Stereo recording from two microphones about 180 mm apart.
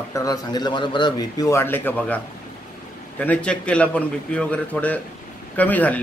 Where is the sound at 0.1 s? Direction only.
20° left (ahead or behind).